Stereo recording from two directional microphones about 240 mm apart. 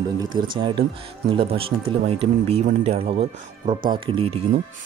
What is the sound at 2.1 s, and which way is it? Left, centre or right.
Speech, right.